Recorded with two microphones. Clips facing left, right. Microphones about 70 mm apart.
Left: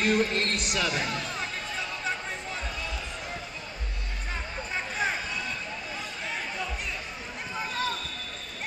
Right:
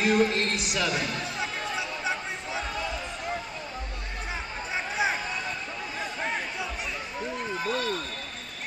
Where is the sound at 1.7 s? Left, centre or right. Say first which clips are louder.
Even; centre.